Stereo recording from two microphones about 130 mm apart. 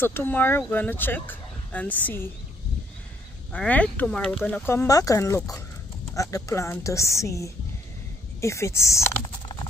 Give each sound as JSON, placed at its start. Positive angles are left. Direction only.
{"t": 0.0, "sound": "speech", "side_deg": 15}
{"t": 3.5, "sound": "speech", "side_deg": 10}
{"t": 4.6, "sound": "a woman's voice", "side_deg": 25}